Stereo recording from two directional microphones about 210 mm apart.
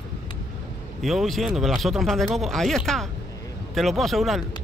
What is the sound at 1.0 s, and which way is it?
Speech, centre (ahead or behind).